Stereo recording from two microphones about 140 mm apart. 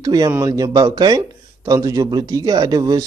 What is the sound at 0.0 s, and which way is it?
A man's voice, 25° right (ahead or behind).